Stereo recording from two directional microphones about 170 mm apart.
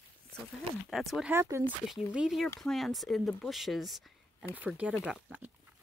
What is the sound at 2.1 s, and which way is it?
Speech, centre (ahead or behind).